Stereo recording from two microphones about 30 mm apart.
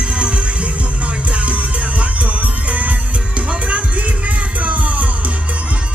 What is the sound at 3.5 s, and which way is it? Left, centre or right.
Music, right.